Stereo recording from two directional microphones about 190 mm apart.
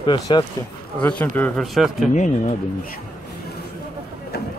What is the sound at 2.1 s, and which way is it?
Speech, 40° left (ahead or behind).